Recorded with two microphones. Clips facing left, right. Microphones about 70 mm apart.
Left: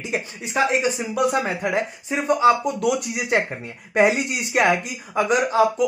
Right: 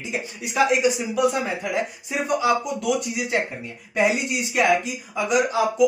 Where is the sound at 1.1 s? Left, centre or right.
Left.